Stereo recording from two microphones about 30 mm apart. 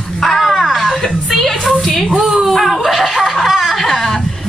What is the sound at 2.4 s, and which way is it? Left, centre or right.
Laughter, centre.